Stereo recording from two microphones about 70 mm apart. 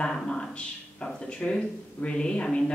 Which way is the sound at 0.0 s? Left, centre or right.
Centre.